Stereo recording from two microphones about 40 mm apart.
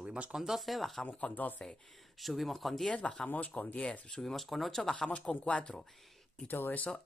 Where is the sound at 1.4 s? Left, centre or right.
Left.